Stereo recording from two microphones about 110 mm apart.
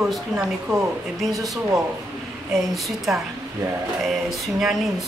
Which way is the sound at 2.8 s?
Centre (ahead or behind).